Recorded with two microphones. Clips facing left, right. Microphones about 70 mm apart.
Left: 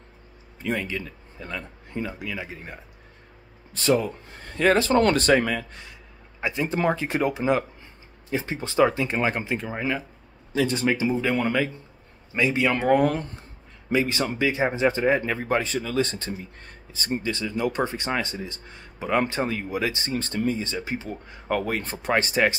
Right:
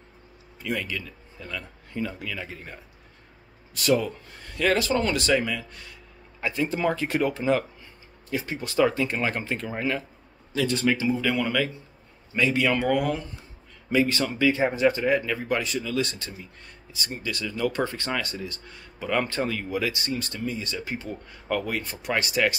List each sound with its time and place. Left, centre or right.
0.6 s speech: left
4.9 s speech: left
5.7 s speech: left
12.4 s speech: left
12.8 s a sound: left
13.9 s speech: left